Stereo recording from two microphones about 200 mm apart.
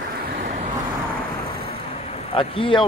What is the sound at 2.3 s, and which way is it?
Speech, 25° left (ahead or behind).